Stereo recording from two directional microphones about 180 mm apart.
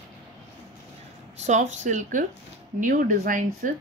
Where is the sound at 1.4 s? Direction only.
40° right (ahead or behind).